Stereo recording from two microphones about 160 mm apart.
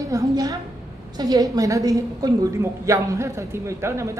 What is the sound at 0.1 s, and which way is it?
A woman's voice, 20° right (ahead or behind).